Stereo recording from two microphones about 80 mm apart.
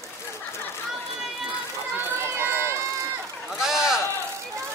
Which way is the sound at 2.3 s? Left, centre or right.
Right.